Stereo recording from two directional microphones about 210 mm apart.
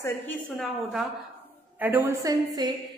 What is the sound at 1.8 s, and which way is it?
Speech, 10° right (ahead or behind).